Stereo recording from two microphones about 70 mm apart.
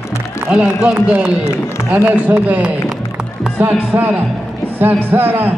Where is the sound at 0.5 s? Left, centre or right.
Centre.